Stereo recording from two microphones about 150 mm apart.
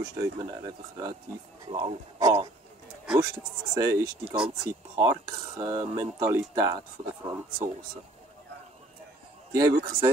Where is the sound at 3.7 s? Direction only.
25° right (ahead or behind).